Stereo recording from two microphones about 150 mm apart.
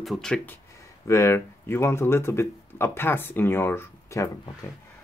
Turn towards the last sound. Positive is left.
turn(degrees=15)  # may be behind; listen again after turning